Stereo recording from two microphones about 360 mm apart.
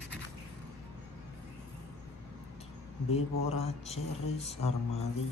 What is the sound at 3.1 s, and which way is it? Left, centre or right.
Speech, centre.